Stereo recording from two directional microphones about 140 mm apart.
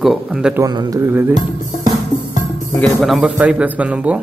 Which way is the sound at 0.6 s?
25° right (ahead or behind).